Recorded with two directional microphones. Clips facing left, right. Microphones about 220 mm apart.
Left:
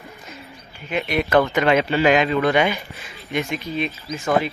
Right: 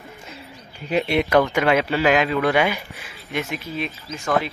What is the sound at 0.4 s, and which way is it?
Bird, 35° right (ahead or behind).